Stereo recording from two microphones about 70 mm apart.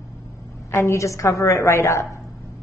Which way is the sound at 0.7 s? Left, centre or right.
Left.